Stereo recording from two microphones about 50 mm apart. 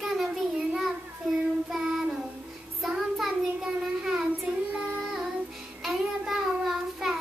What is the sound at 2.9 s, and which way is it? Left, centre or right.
Child singing, centre.